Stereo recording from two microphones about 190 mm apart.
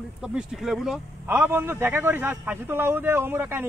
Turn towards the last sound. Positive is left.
turn(degrees=-10)  # may be behind; listen again after turning